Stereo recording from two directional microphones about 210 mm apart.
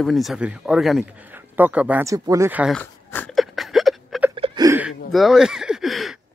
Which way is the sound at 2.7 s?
10° left (ahead or behind).